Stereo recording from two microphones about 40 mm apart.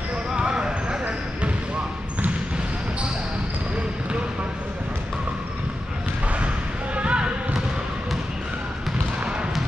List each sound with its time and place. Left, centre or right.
0.4 s basketball bounce: right
7.0 s music: right